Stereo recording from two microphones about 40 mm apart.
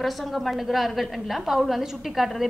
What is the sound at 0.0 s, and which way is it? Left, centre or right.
A woman's voice, centre.